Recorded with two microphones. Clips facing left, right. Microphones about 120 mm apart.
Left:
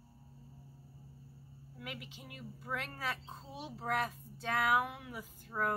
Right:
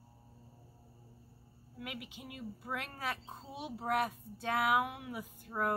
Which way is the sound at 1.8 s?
10° right (ahead or behind).